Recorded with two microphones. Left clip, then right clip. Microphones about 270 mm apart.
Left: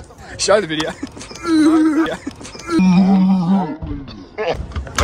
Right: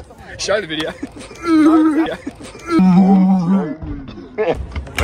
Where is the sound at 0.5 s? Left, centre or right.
Centre.